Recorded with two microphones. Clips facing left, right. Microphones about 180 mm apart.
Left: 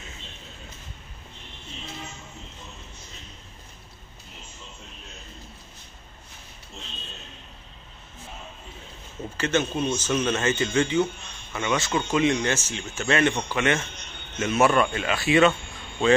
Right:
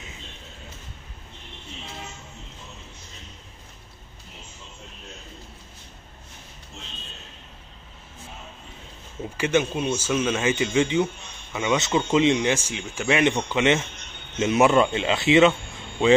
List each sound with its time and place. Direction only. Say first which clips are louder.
9.4 s speech: right 2 dB; 10° right (ahead or behind)